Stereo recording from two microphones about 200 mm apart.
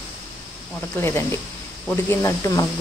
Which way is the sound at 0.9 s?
10° left (ahead or behind).